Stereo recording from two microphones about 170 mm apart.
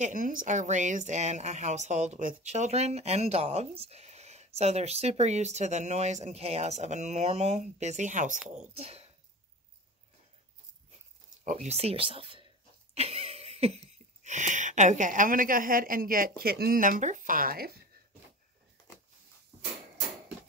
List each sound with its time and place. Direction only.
0.0 s a woman's voice: 55° right (ahead or behind); by 9.0 s 35° right (ahead or behind)
11.4 s speech: 40° right (ahead or behind)
12.9 s a sound: 35° right (ahead or behind); by 17.7 s 60° right (ahead or behind)